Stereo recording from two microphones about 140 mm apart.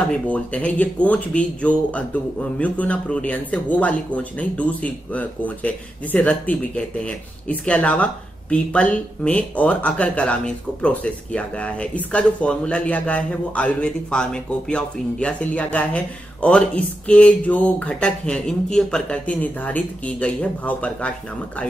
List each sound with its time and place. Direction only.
0.3 s speech: 10° left (ahead or behind)